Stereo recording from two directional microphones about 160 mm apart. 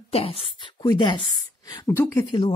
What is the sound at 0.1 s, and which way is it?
A woman's voice, 35° left (ahead or behind).